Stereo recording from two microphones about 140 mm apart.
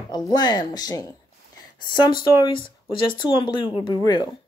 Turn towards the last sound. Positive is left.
turn(degrees=30)  # may be behind; listen again after turning